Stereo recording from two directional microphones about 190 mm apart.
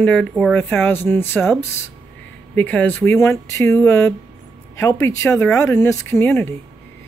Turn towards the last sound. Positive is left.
turn(degrees=10)  # may be behind; listen again after turning